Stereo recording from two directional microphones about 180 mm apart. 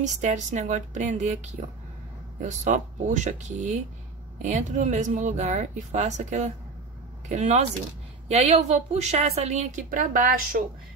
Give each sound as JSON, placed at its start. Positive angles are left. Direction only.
{"t": 0.0, "sound": "a woman's voice", "side_deg": -40}